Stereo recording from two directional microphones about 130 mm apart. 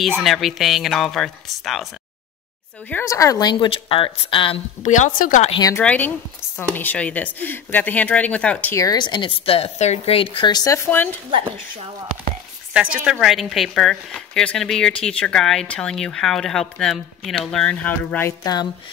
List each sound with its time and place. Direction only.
0.1 s a woman's voice: centre (ahead or behind)
2.9 s a woman's voice: 20° left (ahead or behind); by 4.6 s 40° left (ahead or behind)
4.8 s speech: 75° left (ahead or behind)
5.8 s speech: 15° left (ahead or behind)
8.7 s a woman's voice: 30° left (ahead or behind); by 11.1 s 15° left (ahead or behind)
12.7 s a woman's voice: 10° right (ahead or behind); by 18.3 s 15° left (ahead or behind)
18.4 s a woman's voice: 30° left (ahead or behind)